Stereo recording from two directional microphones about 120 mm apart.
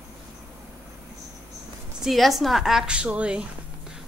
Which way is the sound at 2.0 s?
Centre (ahead or behind).